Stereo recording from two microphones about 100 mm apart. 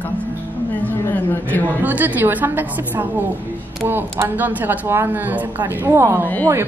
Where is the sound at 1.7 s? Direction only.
15° right (ahead or behind).